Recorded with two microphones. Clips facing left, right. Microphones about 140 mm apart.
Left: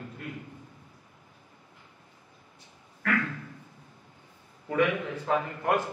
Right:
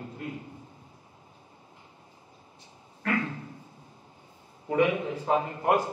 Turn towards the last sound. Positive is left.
turn(degrees=-25)  # may be behind; listen again after turning